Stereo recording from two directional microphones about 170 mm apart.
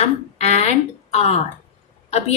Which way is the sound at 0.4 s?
40° left (ahead or behind).